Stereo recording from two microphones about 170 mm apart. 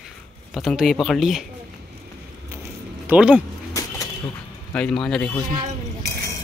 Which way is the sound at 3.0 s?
10° right (ahead or behind).